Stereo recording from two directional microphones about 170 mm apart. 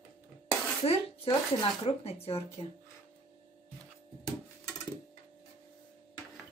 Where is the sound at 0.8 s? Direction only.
30° left (ahead or behind).